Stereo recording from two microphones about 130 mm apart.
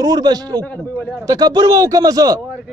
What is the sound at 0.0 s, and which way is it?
A man's voice, 30° right (ahead or behind).